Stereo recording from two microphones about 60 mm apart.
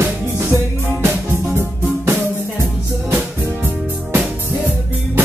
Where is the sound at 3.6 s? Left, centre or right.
Right.